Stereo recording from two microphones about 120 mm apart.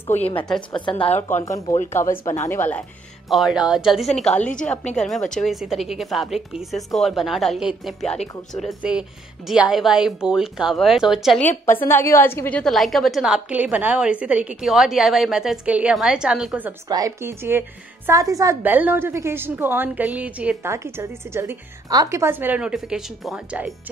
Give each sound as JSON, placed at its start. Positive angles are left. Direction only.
{"t": 0.0, "sound": "a woman's voice", "side_deg": 55}
{"t": 0.6, "sound": "a woman's voice", "side_deg": 40}
{"t": 1.3, "sound": "speech", "side_deg": 30}
{"t": 3.3, "sound": "a woman's voice", "side_deg": 0}
{"t": 9.5, "sound": "a woman's voice", "side_deg": -5}
{"t": 11.3, "sound": "a woman's voice", "side_deg": 15}
{"t": 12.7, "sound": "a woman's voice", "side_deg": 0}
{"t": 16.9, "sound": "speech", "side_deg": -25}
{"t": 18.6, "sound": "a woman's voice", "side_deg": -15}
{"t": 20.7, "sound": "a woman's voice", "side_deg": -25}